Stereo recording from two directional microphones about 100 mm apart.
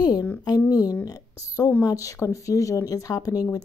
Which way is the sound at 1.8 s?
30° left (ahead or behind).